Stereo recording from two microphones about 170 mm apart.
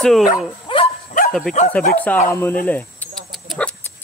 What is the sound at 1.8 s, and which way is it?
Speech, 5° left (ahead or behind).